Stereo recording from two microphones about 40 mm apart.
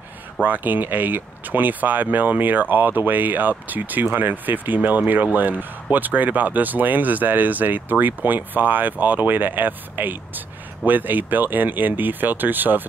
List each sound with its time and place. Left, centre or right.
0.4 s speech: right